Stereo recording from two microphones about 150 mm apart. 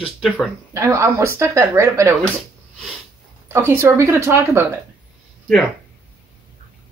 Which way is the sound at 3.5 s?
15° right (ahead or behind).